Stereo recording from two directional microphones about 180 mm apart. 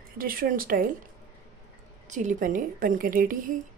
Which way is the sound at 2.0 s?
45° right (ahead or behind).